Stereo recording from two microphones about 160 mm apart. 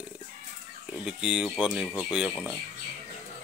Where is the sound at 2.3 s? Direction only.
15° left (ahead or behind).